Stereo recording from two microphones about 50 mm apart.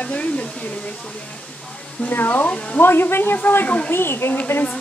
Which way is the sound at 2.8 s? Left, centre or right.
Left.